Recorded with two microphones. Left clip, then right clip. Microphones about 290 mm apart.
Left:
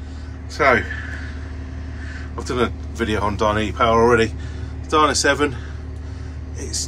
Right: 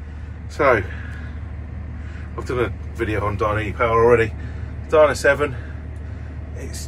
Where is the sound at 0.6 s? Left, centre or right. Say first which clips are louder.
Left 1 dB; centre.